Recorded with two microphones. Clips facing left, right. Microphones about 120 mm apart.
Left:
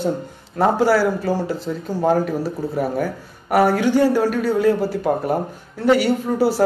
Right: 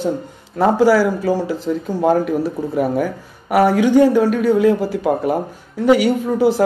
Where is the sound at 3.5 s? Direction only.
15° right (ahead or behind).